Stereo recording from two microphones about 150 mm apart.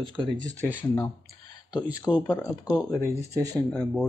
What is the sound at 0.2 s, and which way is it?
Speech, 30° right (ahead or behind).